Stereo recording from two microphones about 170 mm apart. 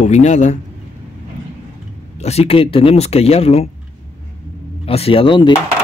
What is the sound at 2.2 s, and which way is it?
Speech, 40° left (ahead or behind).